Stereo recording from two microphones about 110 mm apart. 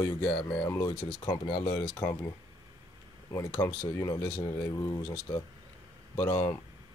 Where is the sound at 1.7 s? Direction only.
20° left (ahead or behind).